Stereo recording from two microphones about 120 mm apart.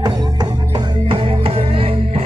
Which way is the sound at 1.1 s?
50° right (ahead or behind).